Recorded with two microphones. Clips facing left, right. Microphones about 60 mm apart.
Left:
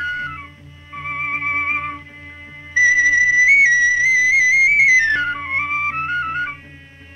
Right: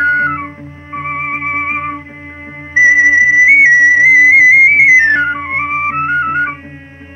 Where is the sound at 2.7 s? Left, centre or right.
Right.